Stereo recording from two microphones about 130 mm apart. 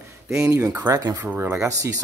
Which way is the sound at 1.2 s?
15° right (ahead or behind).